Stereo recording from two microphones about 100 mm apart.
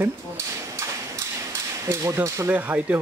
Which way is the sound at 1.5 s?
30° right (ahead or behind).